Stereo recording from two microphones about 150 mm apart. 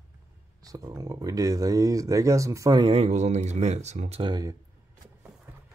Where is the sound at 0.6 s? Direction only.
25° right (ahead or behind); by 4.3 s 40° right (ahead or behind).